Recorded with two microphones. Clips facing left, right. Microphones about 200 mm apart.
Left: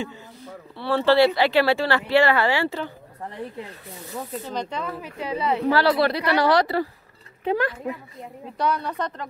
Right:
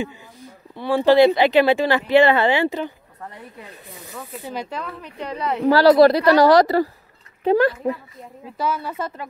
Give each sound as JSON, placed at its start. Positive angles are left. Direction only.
{"t": 0.7, "sound": "speech", "side_deg": -15}
{"t": 4.5, "sound": "speech", "side_deg": -5}
{"t": 5.7, "sound": "speech", "side_deg": -40}
{"t": 8.5, "sound": "speech", "side_deg": -5}